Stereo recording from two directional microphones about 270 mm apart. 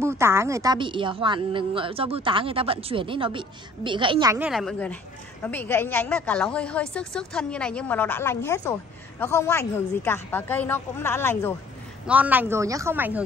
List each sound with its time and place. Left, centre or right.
0.0 s a woman's voice: centre
4.5 s a woman's voice: centre
12.1 s a woman's voice: centre